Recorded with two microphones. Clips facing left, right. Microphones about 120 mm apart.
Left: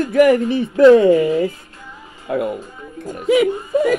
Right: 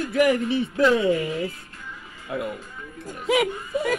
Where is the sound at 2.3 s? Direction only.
55° left (ahead or behind).